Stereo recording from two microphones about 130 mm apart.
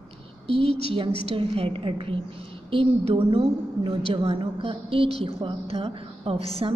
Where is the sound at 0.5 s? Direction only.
45° right (ahead or behind).